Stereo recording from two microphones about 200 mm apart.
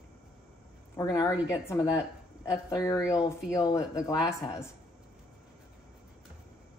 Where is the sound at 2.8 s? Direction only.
15° left (ahead or behind).